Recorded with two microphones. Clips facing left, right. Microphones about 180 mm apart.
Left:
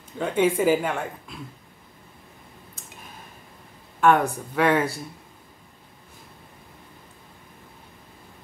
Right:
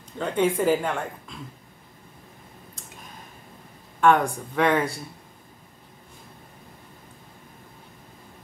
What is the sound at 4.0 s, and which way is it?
Speech, 5° left (ahead or behind).